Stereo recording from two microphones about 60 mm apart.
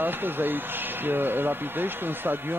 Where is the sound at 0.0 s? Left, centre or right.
Right.